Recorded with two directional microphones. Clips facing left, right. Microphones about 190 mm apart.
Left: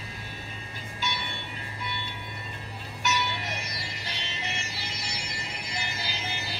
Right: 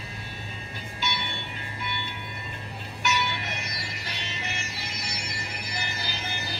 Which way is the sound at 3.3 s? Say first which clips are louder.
Even; 35° left (ahead or behind).